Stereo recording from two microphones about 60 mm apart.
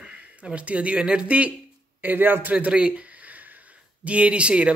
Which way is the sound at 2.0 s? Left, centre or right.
Right.